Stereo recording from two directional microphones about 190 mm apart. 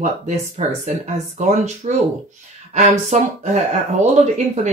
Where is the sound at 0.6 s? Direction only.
35° right (ahead or behind).